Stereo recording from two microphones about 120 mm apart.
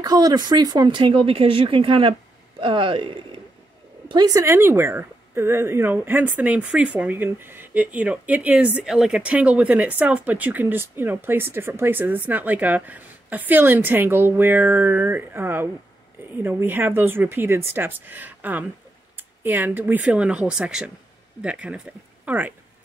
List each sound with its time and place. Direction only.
0.0 s speech: 30° right (ahead or behind)
4.1 s a woman's voice: 30° right (ahead or behind); by 22.5 s 15° right (ahead or behind)